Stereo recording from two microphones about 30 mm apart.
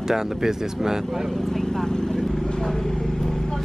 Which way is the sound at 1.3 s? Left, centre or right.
Centre.